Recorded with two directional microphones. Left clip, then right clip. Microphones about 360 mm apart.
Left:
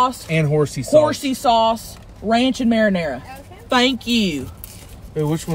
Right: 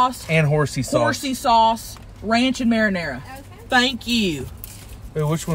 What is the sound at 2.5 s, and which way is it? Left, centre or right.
Speech, centre.